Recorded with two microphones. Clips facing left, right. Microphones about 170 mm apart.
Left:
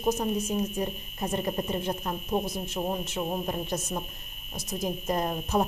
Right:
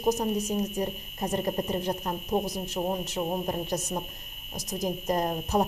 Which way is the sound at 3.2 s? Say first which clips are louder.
Right 1 dB; 25° right (ahead or behind).